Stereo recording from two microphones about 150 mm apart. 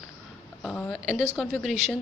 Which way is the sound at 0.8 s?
5° left (ahead or behind).